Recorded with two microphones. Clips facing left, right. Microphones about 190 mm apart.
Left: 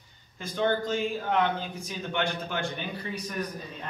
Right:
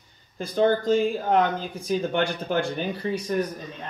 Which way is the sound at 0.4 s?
35° right (ahead or behind).